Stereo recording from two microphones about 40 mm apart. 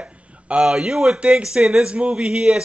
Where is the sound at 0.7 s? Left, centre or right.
Centre.